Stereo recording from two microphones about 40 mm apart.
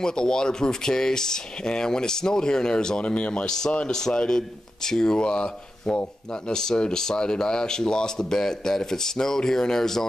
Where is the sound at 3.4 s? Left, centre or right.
Centre.